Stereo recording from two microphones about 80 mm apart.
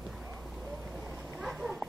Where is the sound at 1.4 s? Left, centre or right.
Centre.